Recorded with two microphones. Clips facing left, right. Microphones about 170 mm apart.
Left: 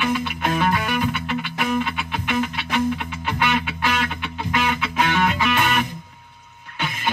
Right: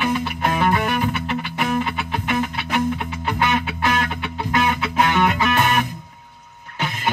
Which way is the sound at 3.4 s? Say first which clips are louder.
Right 2 dB; 40° right (ahead or behind).